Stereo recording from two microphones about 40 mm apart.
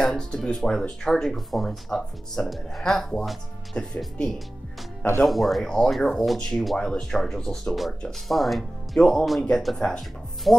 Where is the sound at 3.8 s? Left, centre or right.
Left.